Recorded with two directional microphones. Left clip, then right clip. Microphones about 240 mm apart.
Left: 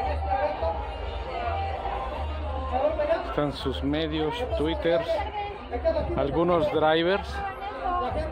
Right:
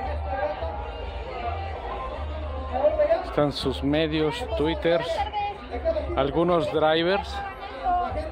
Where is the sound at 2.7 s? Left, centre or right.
Left.